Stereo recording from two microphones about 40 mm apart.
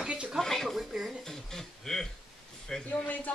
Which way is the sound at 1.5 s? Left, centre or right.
Centre.